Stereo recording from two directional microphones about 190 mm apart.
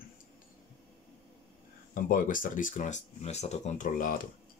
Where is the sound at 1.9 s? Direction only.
45° left (ahead or behind).